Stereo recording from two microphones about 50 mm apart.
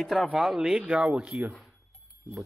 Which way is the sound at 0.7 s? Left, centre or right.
Right.